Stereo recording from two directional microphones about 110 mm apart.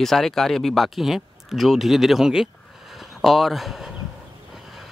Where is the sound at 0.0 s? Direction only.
5° left (ahead or behind).